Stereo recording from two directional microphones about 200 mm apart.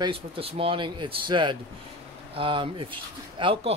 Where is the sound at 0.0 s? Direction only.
30° right (ahead or behind).